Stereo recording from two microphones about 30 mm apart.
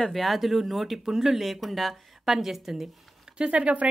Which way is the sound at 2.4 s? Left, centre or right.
Centre.